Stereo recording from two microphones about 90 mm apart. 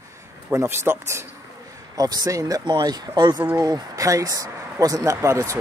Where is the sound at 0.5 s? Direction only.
30° right (ahead or behind).